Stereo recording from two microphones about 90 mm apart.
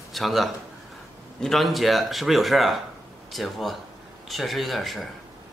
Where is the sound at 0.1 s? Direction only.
Centre (ahead or behind).